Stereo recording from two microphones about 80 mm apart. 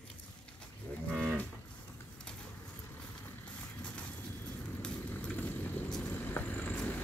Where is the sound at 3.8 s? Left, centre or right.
Centre.